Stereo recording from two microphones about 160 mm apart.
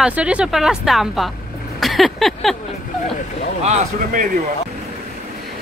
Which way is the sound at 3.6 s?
45° right (ahead or behind).